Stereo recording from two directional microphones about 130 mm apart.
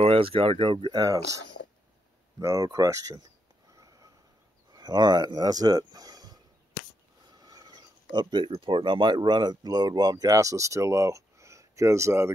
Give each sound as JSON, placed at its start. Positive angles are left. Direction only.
{"t": 0.0, "sound": "speech", "side_deg": -45}
{"t": 1.0, "sound": "speech", "side_deg": -25}
{"t": 2.4, "sound": "speech", "side_deg": -25}
{"t": 3.7, "sound": "sniff", "side_deg": -25}
{"t": 4.7, "sound": "speech", "side_deg": -30}
{"t": 7.3, "sound": "a sound", "side_deg": -30}
{"t": 8.5, "sound": "speech", "side_deg": -40}